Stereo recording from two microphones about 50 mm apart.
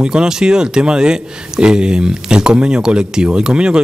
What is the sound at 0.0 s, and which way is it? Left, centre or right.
Speech, centre.